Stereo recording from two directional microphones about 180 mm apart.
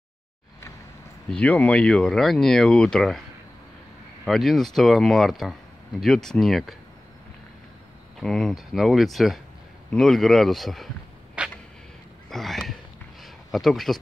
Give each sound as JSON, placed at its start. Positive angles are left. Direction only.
{"t": 1.3, "sound": "speech", "side_deg": 5}
{"t": 4.2, "sound": "speech", "side_deg": 0}
{"t": 8.2, "sound": "speech", "side_deg": 0}
{"t": 11.4, "sound": "a sound", "side_deg": -5}